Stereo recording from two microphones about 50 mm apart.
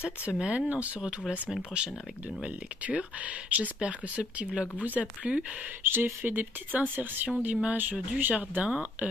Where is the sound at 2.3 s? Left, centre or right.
Right.